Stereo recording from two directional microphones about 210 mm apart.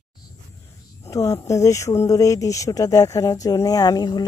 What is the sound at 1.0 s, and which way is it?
Speech, 15° left (ahead or behind).